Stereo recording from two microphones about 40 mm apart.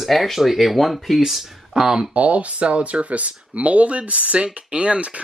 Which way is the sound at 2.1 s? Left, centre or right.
Right.